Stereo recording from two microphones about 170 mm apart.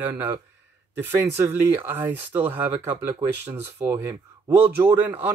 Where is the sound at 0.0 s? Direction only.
10° right (ahead or behind).